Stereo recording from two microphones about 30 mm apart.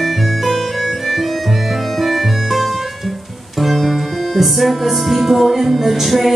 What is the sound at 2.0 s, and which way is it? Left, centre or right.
Music, centre.